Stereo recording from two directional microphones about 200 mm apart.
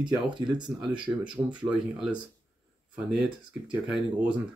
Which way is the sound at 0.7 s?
5° right (ahead or behind).